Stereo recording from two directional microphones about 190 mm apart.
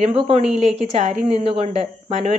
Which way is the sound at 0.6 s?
35° right (ahead or behind).